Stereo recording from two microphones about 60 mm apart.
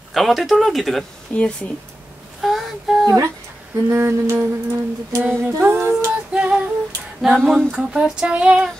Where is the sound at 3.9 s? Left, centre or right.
Right.